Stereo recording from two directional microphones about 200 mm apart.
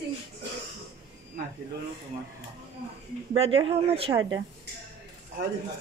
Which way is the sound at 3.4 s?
30° right (ahead or behind).